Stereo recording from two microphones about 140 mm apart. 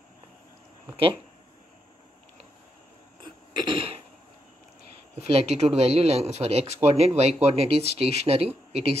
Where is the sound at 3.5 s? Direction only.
35° right (ahead or behind).